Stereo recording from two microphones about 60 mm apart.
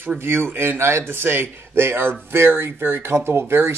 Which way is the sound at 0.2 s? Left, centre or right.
Right.